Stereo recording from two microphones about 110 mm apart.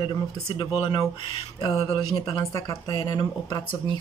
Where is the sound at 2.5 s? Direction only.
30° left (ahead or behind).